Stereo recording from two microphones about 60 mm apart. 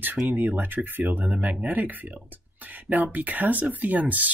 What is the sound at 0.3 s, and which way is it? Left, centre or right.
Speech, right.